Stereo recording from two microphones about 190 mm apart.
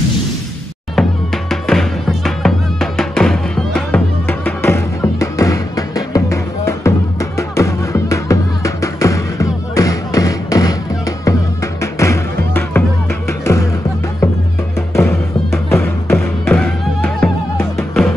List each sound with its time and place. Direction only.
0.9 s music: centre (ahead or behind)
15.0 s music: 15° left (ahead or behind)
16.2 s music: 5° left (ahead or behind)